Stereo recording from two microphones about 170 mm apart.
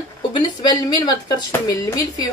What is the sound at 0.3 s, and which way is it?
A woman's voice, 25° left (ahead or behind).